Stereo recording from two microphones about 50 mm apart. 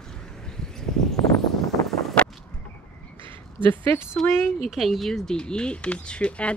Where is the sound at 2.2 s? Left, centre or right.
Left.